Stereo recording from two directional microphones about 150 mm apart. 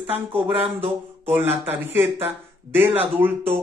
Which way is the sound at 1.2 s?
15° right (ahead or behind).